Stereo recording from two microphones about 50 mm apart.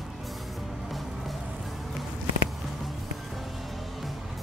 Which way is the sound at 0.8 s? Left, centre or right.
Centre.